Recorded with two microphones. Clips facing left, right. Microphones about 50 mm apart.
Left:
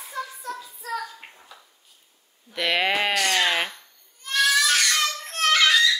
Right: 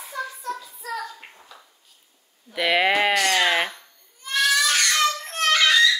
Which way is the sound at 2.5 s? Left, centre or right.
Centre.